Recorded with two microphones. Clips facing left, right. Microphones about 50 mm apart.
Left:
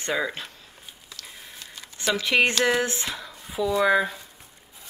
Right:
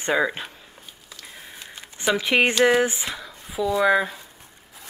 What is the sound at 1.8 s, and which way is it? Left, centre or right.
Speech, right.